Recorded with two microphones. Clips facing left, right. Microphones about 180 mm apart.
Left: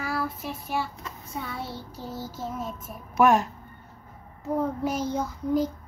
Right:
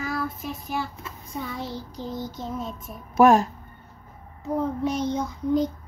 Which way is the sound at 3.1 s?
35° right (ahead or behind).